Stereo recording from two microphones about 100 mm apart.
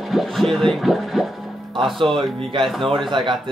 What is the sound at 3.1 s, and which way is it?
Speech, 50° right (ahead or behind).